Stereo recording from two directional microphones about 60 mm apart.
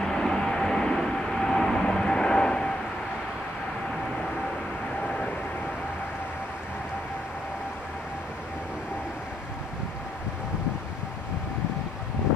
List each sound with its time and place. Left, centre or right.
0.0 s vehicle: centre
5.0 s vehicle: centre